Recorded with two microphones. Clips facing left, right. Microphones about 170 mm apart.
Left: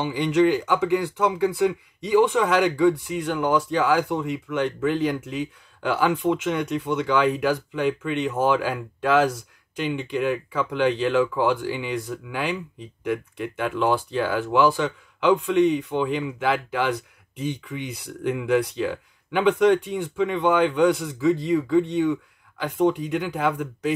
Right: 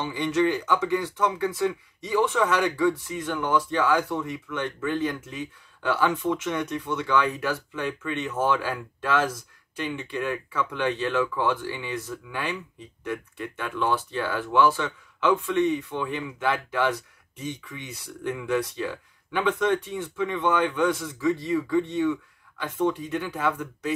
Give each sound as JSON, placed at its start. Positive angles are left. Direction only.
{"t": 0.0, "sound": "speech", "side_deg": 15}